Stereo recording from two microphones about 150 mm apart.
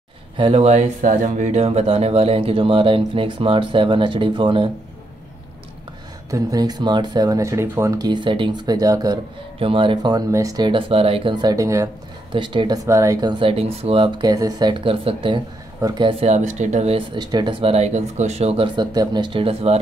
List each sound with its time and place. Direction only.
0.4 s speech: 40° right (ahead or behind)
6.3 s speech: 25° right (ahead or behind)
12.3 s speech: 30° right (ahead or behind)
18.8 s speech: 30° right (ahead or behind)